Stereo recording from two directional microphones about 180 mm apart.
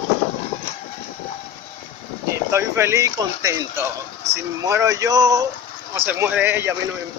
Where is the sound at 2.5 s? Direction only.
15° right (ahead or behind).